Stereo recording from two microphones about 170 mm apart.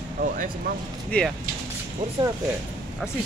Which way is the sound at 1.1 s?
5° left (ahead or behind).